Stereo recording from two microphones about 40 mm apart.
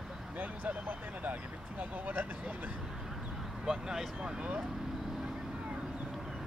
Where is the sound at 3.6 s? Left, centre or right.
Centre.